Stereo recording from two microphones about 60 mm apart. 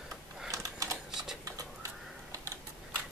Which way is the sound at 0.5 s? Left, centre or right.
Right.